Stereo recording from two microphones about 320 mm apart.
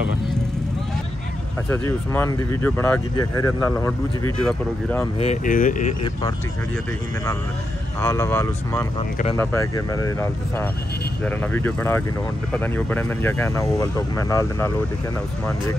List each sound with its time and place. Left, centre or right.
1.7 s speech: centre
5.2 s speech: left
8.0 s speech: centre